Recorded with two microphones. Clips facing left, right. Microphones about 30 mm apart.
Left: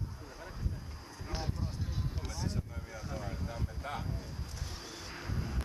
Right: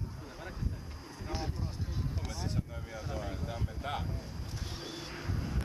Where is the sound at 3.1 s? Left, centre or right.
Centre.